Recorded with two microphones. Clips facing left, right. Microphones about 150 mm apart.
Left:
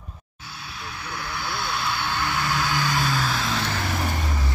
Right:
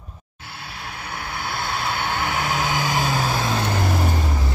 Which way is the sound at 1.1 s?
55° right (ahead or behind).